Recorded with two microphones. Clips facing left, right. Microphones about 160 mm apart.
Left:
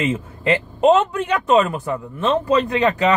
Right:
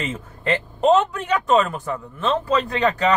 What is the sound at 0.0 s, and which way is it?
Speech, 5° left (ahead or behind).